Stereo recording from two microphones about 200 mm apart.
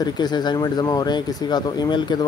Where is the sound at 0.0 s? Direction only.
20° left (ahead or behind).